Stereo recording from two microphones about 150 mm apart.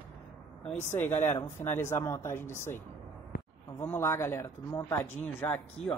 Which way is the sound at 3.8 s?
15° left (ahead or behind).